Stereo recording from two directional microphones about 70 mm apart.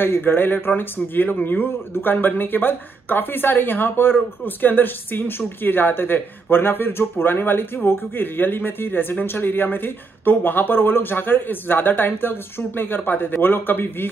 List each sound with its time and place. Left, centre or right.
0.0 s speech: left